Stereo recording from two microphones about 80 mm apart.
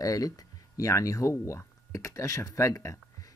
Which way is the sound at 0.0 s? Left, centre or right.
Left.